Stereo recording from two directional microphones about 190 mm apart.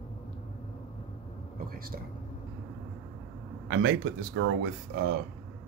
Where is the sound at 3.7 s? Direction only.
70° right (ahead or behind).